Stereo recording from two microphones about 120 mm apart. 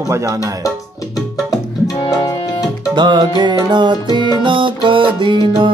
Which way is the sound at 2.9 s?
40° right (ahead or behind).